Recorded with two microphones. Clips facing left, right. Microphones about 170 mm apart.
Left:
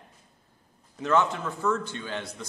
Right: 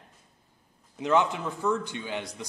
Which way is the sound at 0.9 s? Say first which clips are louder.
Even; 15° right (ahead or behind).